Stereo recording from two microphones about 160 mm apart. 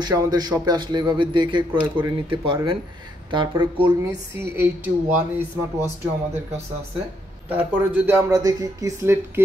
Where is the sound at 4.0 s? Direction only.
15° right (ahead or behind).